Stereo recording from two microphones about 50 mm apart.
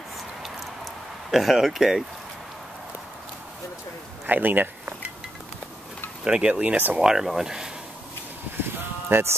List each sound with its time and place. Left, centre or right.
1.3 s speech: centre
4.3 s speech: right
6.2 s speech: centre
7.0 s speech: centre
8.5 s bleat: right